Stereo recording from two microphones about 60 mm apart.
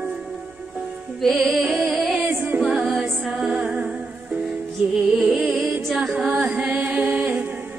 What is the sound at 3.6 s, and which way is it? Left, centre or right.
Music, right.